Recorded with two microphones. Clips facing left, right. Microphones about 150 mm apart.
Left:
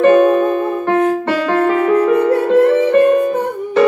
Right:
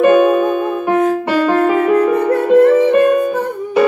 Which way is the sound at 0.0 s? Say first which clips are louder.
Even; 10° right (ahead or behind).